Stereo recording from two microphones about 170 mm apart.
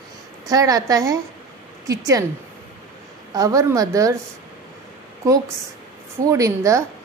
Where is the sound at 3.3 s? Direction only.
20° right (ahead or behind).